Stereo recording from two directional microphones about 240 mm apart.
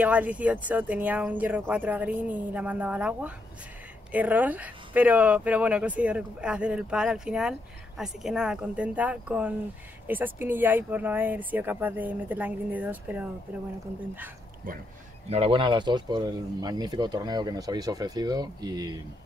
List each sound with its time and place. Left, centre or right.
0.0 s speech: centre
15.2 s speech: right